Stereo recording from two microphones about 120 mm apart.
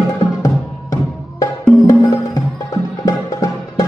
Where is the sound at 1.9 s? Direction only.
30° left (ahead or behind).